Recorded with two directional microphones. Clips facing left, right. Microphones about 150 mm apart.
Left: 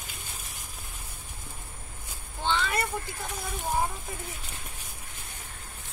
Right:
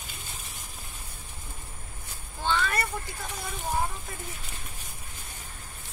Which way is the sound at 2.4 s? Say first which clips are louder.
Even; 15° left (ahead or behind).